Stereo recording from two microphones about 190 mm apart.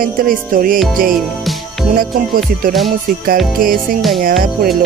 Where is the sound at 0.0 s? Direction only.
45° right (ahead or behind).